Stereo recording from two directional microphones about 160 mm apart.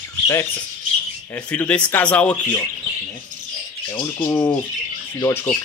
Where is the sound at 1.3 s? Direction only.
10° left (ahead or behind).